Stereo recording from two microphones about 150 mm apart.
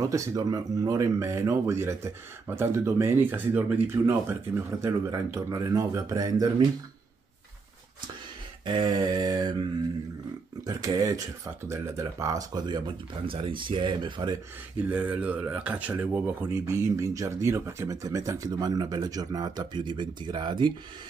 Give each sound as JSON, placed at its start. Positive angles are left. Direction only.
{"t": 0.0, "sound": "speech", "side_deg": -20}
{"t": 8.6, "sound": "speech", "side_deg": -30}
{"t": 14.8, "sound": "speech", "side_deg": -10}